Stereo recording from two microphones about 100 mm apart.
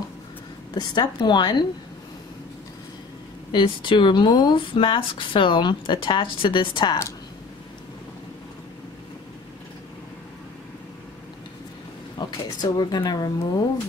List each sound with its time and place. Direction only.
0.7 s a woman's voice: 45° left (ahead or behind)
3.5 s speech: 55° left (ahead or behind)
12.2 s speech: 40° left (ahead or behind)